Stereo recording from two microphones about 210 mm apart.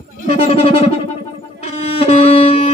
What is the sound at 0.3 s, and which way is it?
Speech, 30° left (ahead or behind).